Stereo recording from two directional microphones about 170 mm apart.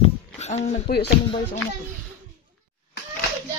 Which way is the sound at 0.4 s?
40° left (ahead or behind).